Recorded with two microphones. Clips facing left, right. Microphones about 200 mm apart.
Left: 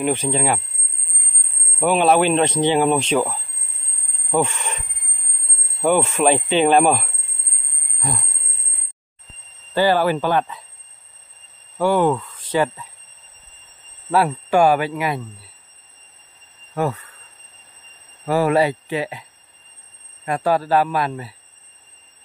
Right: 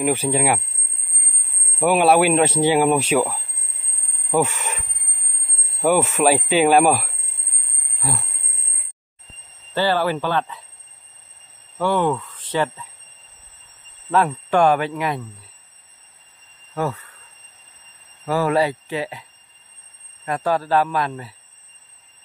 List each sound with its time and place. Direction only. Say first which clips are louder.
0.0 s speech: right 1 dB; 10° right (ahead or behind)
1.8 s speech: right 1 dB; 10° right (ahead or behind)
8.0 s a sound: even; 5° right (ahead or behind)
9.8 s speech: left 3 dB; 15° left (ahead or behind)
11.8 s speech: left 3 dB; 10° left (ahead or behind)
14.1 s speech: left 1 dB; 10° left (ahead or behind)
18.2 s speech: left 2 dB; 15° left (ahead or behind)
20.2 s speech: left 2 dB; 10° left (ahead or behind)